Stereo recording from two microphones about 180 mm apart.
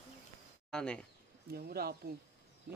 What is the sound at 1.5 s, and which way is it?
Speech, 60° right (ahead or behind).